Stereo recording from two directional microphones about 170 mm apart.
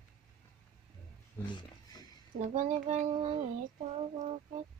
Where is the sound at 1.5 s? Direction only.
25° left (ahead or behind).